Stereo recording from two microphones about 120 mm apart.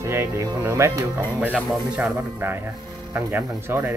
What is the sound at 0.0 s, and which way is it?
Speech, 25° right (ahead or behind).